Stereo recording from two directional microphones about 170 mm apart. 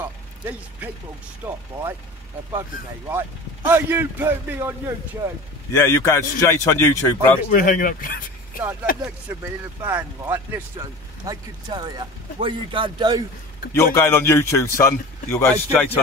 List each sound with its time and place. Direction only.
0.0 s a sound: 10° right (ahead or behind)
1.4 s a man's voice: 15° right (ahead or behind)
3.1 s a man's voice: 15° right (ahead or behind)
5.7 s a man's voice: 15° left (ahead or behind)
7.5 s speech: 55° left (ahead or behind)
9.3 s a man's voice: 15° right (ahead or behind)
10.8 s speech: 25° right (ahead or behind)
13.7 s a man's voice: 15° left (ahead or behind)